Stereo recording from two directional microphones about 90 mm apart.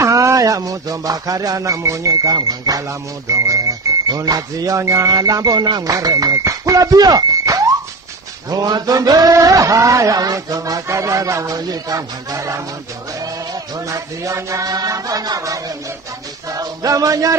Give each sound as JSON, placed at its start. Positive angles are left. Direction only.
{"t": 0.0, "sound": "music", "side_deg": -35}
{"t": 13.7, "sound": "music", "side_deg": -40}